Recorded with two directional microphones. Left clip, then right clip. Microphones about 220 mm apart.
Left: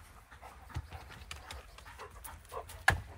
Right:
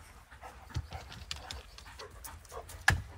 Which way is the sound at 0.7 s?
25° left (ahead or behind).